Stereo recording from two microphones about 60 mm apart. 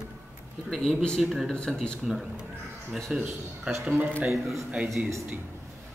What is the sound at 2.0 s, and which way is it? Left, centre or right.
A man's voice, centre.